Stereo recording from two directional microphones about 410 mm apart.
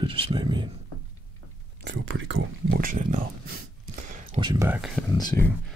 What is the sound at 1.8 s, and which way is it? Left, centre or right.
Speech, right.